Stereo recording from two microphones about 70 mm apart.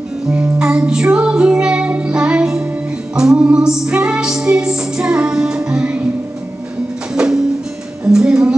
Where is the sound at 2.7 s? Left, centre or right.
Centre.